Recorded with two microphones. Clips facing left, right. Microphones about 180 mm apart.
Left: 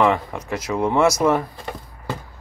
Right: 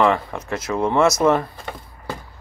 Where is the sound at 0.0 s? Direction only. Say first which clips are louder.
Even; 15° left (ahead or behind).